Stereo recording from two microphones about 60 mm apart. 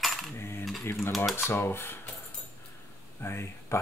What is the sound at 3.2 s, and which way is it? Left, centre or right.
Speech, left.